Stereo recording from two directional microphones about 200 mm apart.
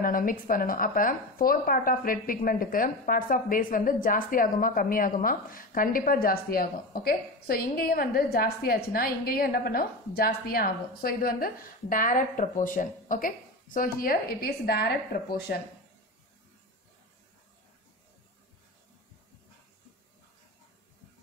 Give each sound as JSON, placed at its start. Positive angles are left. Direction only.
{"t": 0.0, "sound": "speech", "side_deg": 45}